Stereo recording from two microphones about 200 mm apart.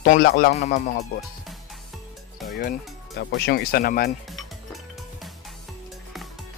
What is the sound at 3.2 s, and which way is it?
Speech, 60° left (ahead or behind).